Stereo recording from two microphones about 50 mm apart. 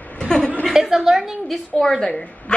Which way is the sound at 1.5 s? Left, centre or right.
Centre.